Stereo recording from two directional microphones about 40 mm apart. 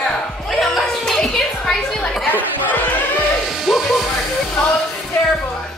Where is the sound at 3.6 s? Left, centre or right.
Centre.